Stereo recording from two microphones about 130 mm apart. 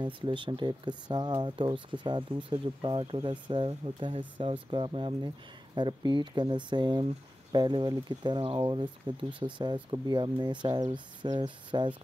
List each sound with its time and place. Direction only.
0.0 s speech: 40° right (ahead or behind)